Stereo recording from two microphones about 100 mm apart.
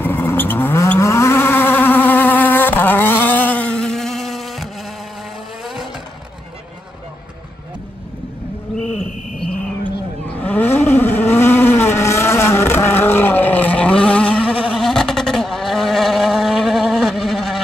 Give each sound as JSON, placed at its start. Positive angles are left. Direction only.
{"t": 0.0, "sound": "vehicle", "side_deg": 20}
{"t": 8.7, "sound": "a sound", "side_deg": 5}
{"t": 10.2, "sound": "vehicle", "side_deg": 15}